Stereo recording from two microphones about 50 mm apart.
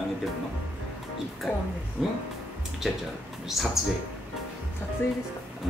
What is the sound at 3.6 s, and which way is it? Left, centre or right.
Speech, centre.